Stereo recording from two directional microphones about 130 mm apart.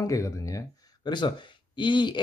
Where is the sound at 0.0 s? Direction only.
25° left (ahead or behind).